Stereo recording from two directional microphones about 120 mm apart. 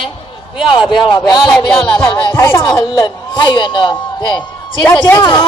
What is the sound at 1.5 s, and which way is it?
Music, 5° left (ahead or behind).